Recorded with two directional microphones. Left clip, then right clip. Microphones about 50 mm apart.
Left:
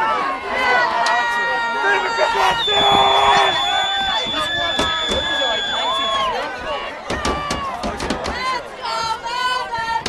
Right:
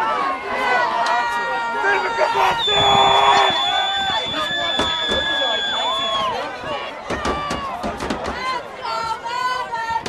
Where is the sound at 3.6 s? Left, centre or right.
Centre.